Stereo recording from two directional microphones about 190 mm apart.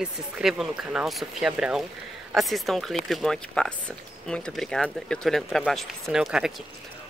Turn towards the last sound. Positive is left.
turn(degrees=-5)  # may be behind; listen again after turning